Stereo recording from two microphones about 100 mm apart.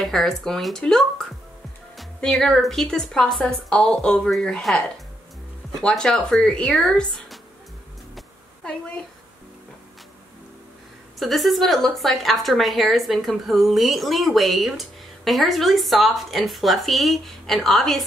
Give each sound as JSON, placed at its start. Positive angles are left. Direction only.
{"t": 0.0, "sound": "a woman's voice", "side_deg": 5}
{"t": 8.6, "sound": "a woman's voice", "side_deg": 10}
{"t": 11.1, "sound": "a woman's voice", "side_deg": 0}